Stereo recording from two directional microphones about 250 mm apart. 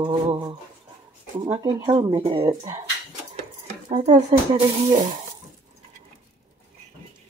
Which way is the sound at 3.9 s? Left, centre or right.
Right.